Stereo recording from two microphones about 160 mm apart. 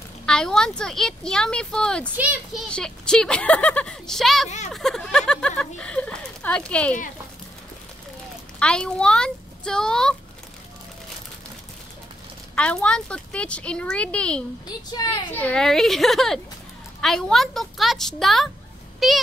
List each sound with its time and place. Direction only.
0.3 s speech: 5° left (ahead or behind)
2.1 s a child's voice: 10° right (ahead or behind)
2.7 s speech: 5° left (ahead or behind)
8.5 s speech: 5° left (ahead or behind)
12.5 s speech: 5° left (ahead or behind)
15.0 s a child's voice: 25° left (ahead or behind)
15.3 s speech: 10° left (ahead or behind)